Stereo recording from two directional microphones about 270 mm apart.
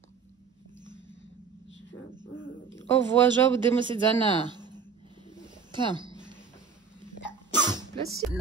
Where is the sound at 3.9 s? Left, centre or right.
Centre.